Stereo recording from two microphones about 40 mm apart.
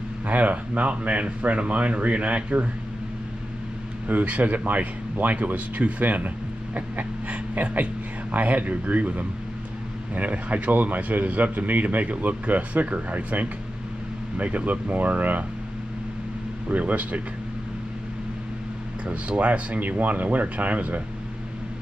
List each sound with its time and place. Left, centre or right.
0.3 s speech: right
4.1 s speech: right
16.6 s speech: right
19.0 s speech: right